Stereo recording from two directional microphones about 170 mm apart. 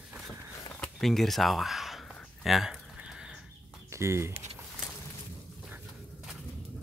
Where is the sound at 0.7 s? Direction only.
Centre (ahead or behind).